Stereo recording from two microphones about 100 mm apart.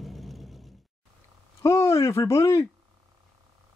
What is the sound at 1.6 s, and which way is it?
Speech, 30° left (ahead or behind).